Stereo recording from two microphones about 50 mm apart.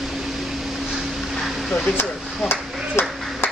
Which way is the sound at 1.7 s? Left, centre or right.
Centre.